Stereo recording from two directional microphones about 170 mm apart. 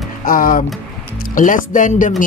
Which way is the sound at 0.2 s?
55° left (ahead or behind).